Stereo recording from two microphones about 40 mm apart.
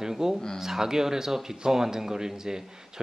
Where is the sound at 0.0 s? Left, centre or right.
Centre.